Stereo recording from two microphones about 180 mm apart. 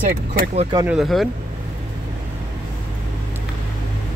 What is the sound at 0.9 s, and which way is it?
Speech, centre (ahead or behind).